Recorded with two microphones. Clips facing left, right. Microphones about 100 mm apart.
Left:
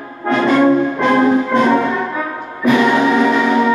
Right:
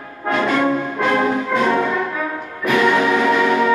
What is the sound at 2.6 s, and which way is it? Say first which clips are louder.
Music: left 3 dB; 5° left (ahead or behind).